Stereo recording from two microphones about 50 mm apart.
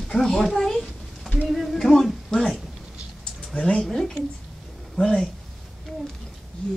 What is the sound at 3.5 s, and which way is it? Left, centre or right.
Speech, centre.